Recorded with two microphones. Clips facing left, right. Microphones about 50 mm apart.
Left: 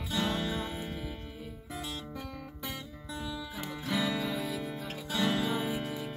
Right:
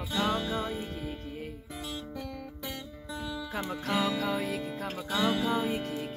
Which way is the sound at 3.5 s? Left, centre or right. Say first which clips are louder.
Right 4 dB; right.